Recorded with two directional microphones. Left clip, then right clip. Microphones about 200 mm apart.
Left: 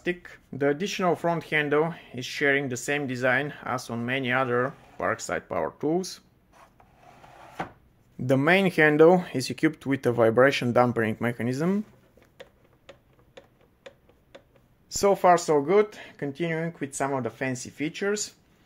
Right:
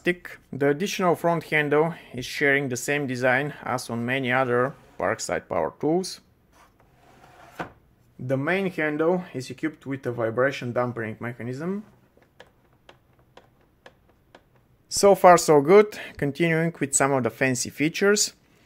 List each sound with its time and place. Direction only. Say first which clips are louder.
0.0 s speech: right 5 dB; 30° right (ahead or behind)
0.5 s speech: right 2 dB; 20° right (ahead or behind)
8.3 s speech: left 4 dB; 40° left (ahead or behind)
14.9 s speech: right 5 dB; 25° right (ahead or behind)